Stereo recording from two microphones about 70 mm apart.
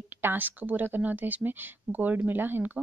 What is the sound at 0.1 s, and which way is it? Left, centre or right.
A woman's voice, right.